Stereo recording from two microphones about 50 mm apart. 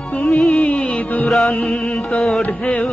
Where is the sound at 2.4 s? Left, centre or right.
Left.